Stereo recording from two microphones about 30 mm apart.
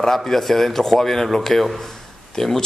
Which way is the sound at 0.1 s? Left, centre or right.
Centre.